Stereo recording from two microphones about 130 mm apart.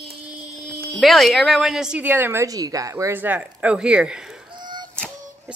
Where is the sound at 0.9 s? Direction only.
Centre (ahead or behind).